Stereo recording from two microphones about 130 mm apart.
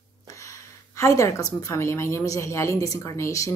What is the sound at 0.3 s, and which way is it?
A woman's voice, 25° left (ahead or behind).